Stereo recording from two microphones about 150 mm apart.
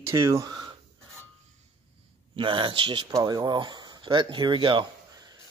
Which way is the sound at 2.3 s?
35° right (ahead or behind).